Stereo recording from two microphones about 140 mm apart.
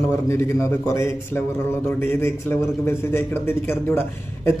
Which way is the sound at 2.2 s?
15° left (ahead or behind).